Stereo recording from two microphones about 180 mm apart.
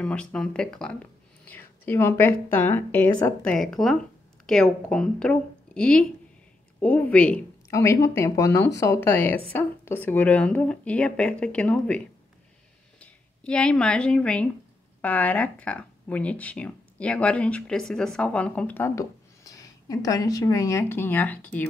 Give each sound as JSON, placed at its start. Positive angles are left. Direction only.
{"t": 0.0, "sound": "a woman's voice", "side_deg": 5}
{"t": 13.0, "sound": "speech", "side_deg": 5}